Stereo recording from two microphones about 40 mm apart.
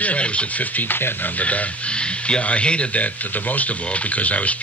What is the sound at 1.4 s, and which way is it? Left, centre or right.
Speech, left.